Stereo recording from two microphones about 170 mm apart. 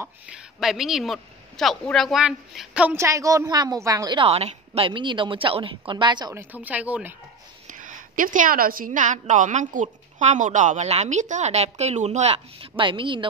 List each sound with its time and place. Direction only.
0.0 s a woman's voice: 5° right (ahead or behind); by 6.3 s 25° right (ahead or behind)
6.3 s speech: 10° right (ahead or behind)
7.6 s a woman's voice: 50° right (ahead or behind); by 13.3 s 30° right (ahead or behind)